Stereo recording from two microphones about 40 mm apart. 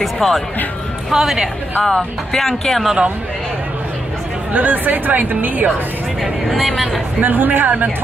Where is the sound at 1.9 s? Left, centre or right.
Centre.